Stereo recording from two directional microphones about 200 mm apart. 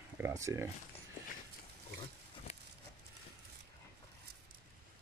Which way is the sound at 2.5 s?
35° left (ahead or behind).